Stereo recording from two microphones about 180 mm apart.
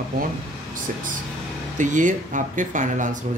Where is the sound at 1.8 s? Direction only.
45° right (ahead or behind).